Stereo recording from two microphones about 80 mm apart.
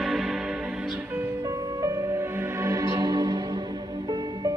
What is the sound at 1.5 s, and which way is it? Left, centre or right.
Music, right.